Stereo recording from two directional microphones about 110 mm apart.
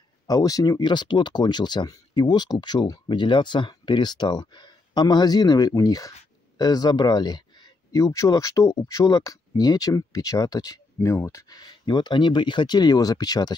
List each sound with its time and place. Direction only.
0.3 s speech: 35° left (ahead or behind)